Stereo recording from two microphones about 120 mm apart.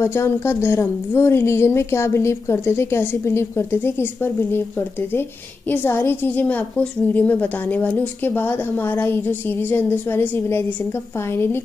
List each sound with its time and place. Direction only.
0.0 s a woman's voice: 20° left (ahead or behind)